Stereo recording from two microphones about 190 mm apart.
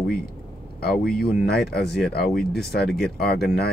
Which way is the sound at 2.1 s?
55° left (ahead or behind).